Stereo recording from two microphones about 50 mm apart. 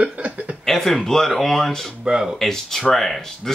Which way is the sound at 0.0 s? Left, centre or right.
Right.